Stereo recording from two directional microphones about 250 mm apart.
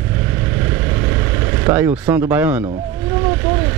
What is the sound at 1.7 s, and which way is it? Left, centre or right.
Speech, centre.